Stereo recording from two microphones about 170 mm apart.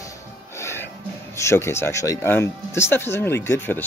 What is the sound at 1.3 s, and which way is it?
Speech, 15° left (ahead or behind).